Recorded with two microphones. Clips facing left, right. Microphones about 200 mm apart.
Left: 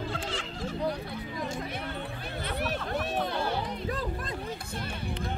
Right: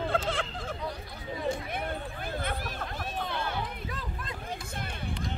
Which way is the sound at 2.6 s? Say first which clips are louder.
Left 6 dB; 70° left (ahead or behind).